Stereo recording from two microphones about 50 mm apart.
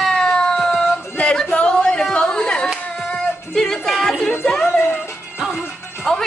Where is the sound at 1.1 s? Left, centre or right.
Left.